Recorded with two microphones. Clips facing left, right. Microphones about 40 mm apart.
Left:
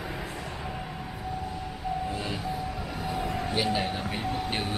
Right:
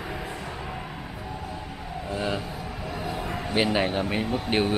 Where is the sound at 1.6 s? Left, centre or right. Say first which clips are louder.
Left 4 dB; centre.